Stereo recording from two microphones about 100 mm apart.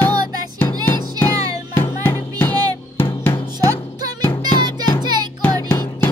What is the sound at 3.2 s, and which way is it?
Drum, 20° left (ahead or behind).